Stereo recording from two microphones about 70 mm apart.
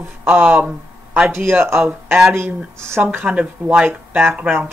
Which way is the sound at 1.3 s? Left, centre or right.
Right.